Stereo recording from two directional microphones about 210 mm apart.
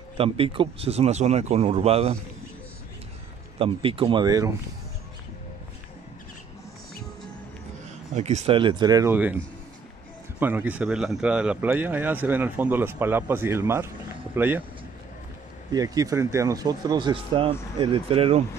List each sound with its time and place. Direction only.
0.2 s speech: 25° right (ahead or behind)
3.5 s speech: 25° right (ahead or behind)
8.1 s speech: 35° right (ahead or behind); by 9.4 s 10° right (ahead or behind)
10.4 s speech: 10° right (ahead or behind)
15.7 s speech: 15° right (ahead or behind)